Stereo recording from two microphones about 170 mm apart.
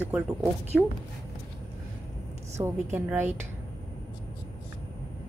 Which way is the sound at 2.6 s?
10° right (ahead or behind).